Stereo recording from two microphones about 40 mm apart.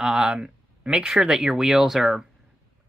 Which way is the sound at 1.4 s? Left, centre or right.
Centre.